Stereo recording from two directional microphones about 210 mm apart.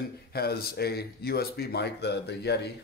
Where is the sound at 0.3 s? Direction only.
50° left (ahead or behind).